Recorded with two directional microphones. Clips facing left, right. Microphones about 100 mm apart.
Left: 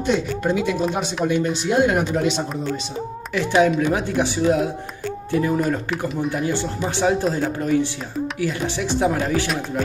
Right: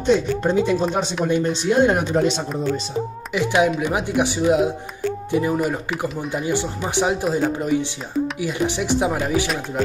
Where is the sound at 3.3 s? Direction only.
15° right (ahead or behind).